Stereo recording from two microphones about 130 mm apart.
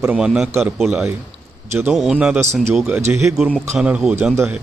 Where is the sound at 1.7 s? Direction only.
15° right (ahead or behind).